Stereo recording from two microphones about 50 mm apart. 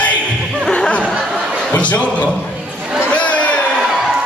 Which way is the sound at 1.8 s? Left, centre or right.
Left.